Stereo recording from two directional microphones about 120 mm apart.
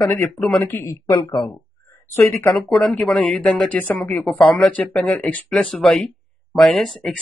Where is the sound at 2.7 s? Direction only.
5° left (ahead or behind).